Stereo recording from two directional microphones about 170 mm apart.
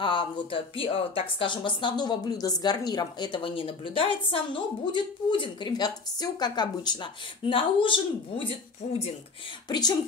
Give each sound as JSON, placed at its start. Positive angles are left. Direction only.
{"t": 0.0, "sound": "speech", "side_deg": 30}
{"t": 9.7, "sound": "speech", "side_deg": 25}